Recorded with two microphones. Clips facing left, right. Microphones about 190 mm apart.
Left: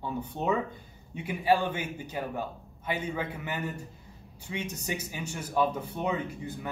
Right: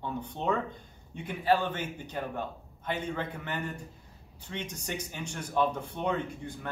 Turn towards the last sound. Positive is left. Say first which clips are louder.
# left 2 dB
turn(degrees=5)  # may be behind; listen again after turning